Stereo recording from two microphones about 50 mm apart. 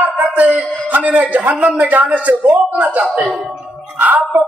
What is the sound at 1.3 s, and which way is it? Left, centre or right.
Speech, right.